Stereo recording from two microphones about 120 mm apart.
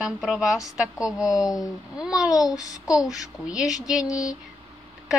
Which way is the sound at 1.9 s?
5° right (ahead or behind).